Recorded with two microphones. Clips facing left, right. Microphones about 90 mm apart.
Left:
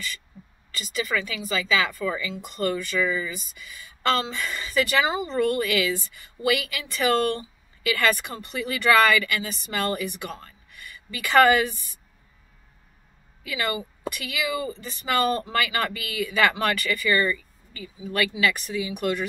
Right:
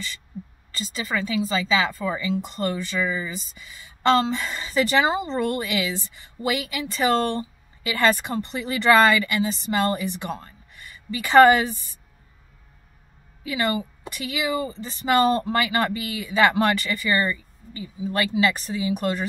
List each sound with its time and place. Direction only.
0.7 s a woman's voice: 30° right (ahead or behind)
13.4 s a woman's voice: 30° right (ahead or behind)